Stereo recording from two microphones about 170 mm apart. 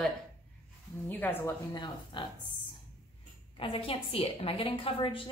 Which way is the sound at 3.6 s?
30° left (ahead or behind).